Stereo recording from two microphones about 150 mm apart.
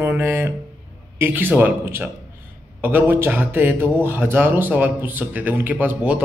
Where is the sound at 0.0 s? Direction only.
15° right (ahead or behind).